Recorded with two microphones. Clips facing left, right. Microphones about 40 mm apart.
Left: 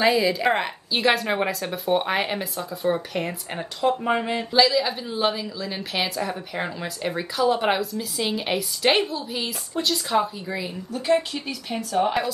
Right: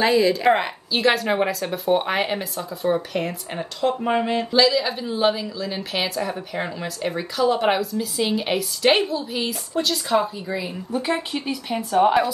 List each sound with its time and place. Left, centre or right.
0.0 s a woman's voice: centre
10.9 s speech: right